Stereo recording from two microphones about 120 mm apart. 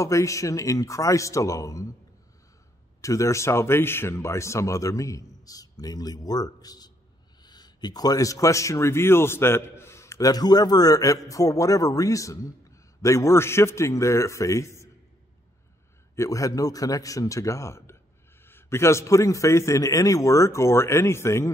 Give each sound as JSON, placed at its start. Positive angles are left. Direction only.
{"t": 0.0, "sound": "speech", "side_deg": 25}
{"t": 3.0, "sound": "speech", "side_deg": 25}
{"t": 16.2, "sound": "speech", "side_deg": 30}